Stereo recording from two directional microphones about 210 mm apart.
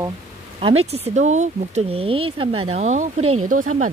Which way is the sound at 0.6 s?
30° right (ahead or behind).